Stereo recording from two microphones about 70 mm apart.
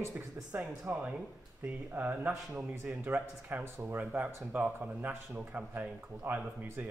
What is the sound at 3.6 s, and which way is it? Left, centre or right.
Speech, right.